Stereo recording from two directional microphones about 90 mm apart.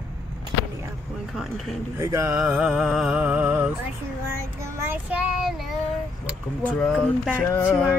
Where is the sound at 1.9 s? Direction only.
35° right (ahead or behind).